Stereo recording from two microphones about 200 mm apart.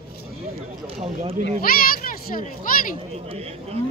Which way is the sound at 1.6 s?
45° left (ahead or behind).